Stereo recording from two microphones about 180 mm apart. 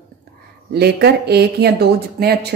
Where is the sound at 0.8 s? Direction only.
65° right (ahead or behind).